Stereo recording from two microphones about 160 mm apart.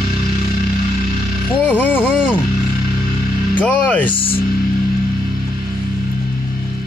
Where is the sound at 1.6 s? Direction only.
10° left (ahead or behind).